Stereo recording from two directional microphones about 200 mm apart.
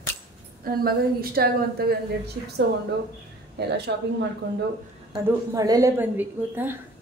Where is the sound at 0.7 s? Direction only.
50° right (ahead or behind).